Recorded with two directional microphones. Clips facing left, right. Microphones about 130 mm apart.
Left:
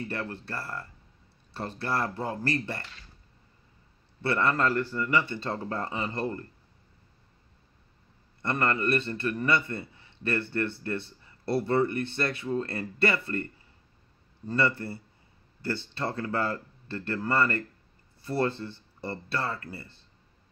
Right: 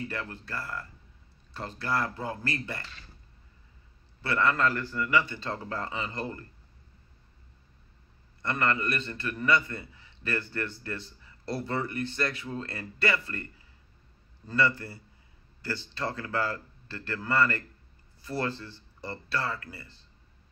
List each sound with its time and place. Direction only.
0.2 s speech: 30° left (ahead or behind)
4.2 s speech: 30° left (ahead or behind)
8.4 s speech: 30° left (ahead or behind)
14.5 s speech: 25° left (ahead or behind)
16.0 s speech: 25° left (ahead or behind)